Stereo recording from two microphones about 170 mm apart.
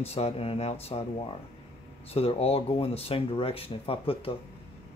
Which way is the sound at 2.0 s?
35° left (ahead or behind).